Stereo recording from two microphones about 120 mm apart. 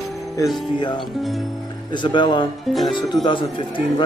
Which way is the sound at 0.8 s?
40° left (ahead or behind).